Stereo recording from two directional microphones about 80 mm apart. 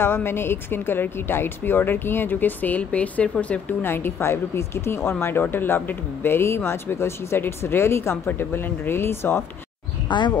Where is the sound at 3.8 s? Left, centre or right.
Left.